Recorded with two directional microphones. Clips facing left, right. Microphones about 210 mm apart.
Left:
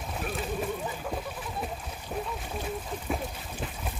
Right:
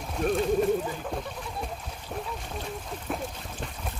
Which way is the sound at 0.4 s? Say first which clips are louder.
Right 8 dB; 5° left (ahead or behind).